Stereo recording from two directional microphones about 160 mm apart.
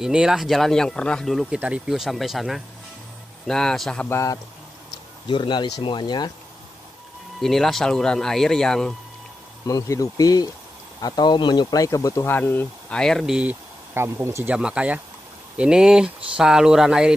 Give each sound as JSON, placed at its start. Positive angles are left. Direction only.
{"t": 0.0, "sound": "speech", "side_deg": -5}
{"t": 4.1, "sound": "speech", "side_deg": 20}
{"t": 5.3, "sound": "speech", "side_deg": 30}
{"t": 7.3, "sound": "speech", "side_deg": 0}
{"t": 9.7, "sound": "speech", "side_deg": 20}